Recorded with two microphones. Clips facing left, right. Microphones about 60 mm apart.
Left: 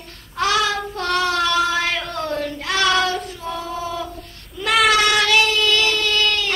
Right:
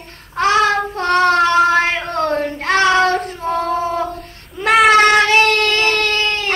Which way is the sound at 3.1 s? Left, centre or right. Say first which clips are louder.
Right 7 dB; right.